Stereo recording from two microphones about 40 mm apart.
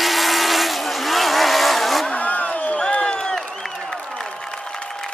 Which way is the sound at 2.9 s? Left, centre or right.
Left.